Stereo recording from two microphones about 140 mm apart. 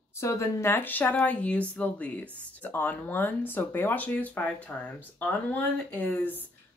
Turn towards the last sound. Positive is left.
turn(degrees=15)  # may be behind; listen again after turning